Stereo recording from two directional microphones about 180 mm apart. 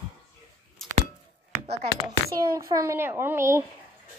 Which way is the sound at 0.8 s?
Centre (ahead or behind).